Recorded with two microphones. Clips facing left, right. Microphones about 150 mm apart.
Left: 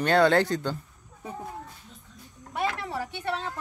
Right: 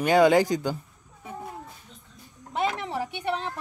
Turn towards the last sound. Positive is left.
turn(degrees=-15)  # may be behind; listen again after turning